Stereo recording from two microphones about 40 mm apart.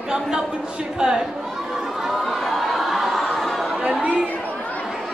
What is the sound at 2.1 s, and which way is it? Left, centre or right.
Chatter, centre.